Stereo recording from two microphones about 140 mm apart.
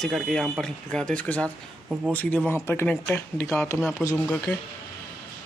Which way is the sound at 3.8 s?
Centre (ahead or behind).